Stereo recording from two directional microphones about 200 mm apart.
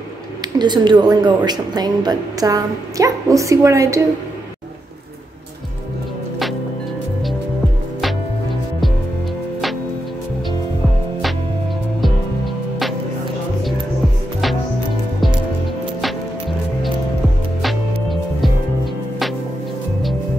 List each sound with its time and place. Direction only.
0.6 s a woman's voice: 20° right (ahead or behind)
17.6 s music: centre (ahead or behind)